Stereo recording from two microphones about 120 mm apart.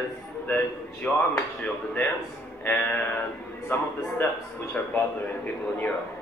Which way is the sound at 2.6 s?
10° left (ahead or behind).